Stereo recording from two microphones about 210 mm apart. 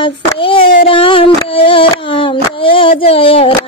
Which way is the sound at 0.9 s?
25° left (ahead or behind).